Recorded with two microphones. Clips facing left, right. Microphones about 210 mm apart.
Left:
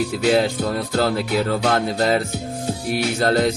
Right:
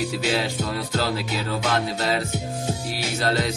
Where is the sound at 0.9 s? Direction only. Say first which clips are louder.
Left 7 dB; 50° left (ahead or behind).